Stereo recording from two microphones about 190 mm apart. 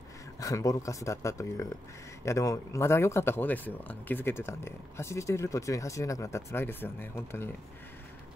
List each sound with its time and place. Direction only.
0.4 s speech: 15° left (ahead or behind)